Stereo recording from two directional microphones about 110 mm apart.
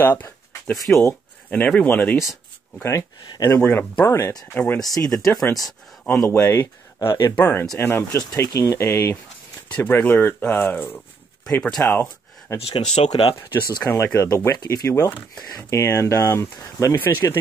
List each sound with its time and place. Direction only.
0.0 s a sound: 20° left (ahead or behind)
1.6 s speech: 10° left (ahead or behind)
2.8 s speech: 30° left (ahead or behind)
4.3 s speech: 35° left (ahead or behind)
5.1 s speech: 5° left (ahead or behind)
6.2 s speech: 20° left (ahead or behind)
11.9 s a sound: 25° left (ahead or behind)
12.5 s speech: 65° left (ahead or behind)
13.1 s speech: 40° left (ahead or behind)
13.8 s speech: 25° left (ahead or behind)
14.9 s speech: 25° left (ahead or behind)